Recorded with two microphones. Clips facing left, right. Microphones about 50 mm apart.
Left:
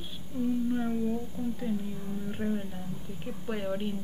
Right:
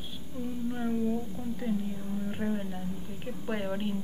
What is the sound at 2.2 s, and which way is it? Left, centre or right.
A woman's voice, centre.